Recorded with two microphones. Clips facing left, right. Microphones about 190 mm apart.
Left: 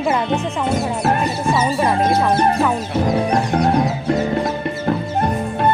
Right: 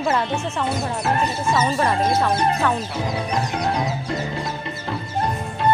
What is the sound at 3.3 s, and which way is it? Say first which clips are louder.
Music: left 6 dB; 55° left (ahead or behind).